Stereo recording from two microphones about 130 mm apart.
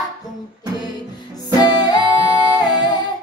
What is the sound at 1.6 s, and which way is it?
Music, 35° left (ahead or behind).